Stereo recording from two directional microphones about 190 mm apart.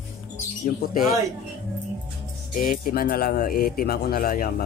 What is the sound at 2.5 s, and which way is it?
Speech, 50° left (ahead or behind).